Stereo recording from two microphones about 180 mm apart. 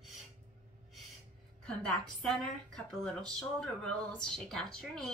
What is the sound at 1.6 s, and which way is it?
Speech, 5° left (ahead or behind).